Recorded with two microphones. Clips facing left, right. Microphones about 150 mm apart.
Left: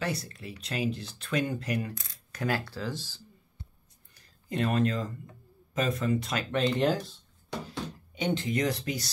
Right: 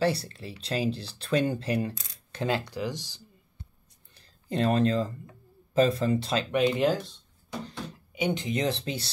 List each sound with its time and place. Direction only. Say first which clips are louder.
0.0 s speech: right 7 dB; 30° right (ahead or behind); by 3.2 s 15° right (ahead or behind)
4.1 s a sound: right 3 dB; 30° right (ahead or behind)
5.7 s speech: right 5 dB; 30° right (ahead or behind)
6.5 s speech: right 2 dB; 10° right (ahead or behind); by 9.1 s 30° right (ahead or behind)